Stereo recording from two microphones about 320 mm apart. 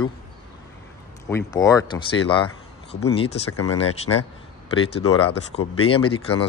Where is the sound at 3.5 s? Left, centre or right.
Left.